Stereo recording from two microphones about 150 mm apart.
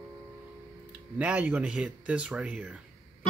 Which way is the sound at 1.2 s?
10° right (ahead or behind).